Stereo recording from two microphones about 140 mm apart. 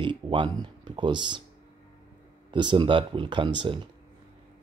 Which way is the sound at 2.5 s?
35° right (ahead or behind).